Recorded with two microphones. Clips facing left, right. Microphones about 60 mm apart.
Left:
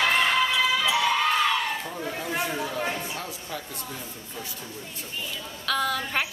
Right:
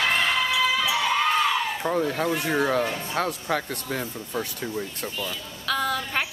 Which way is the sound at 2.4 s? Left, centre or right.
Right.